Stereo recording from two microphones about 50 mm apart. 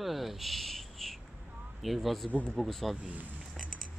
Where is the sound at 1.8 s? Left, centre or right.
Centre.